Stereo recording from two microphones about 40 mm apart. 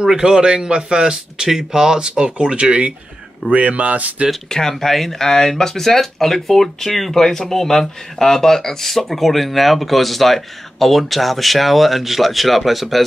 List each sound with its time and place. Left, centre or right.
0.0 s speech: centre; by 4.3 s right
4.5 s speech: centre